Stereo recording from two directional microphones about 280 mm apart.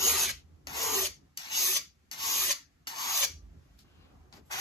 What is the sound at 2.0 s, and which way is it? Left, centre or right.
Filing, centre.